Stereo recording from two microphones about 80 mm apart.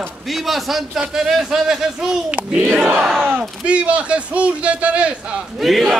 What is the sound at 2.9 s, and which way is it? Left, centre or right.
Speech, centre.